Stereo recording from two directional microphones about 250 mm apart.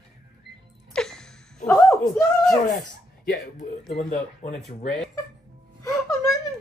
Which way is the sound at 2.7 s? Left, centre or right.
Left.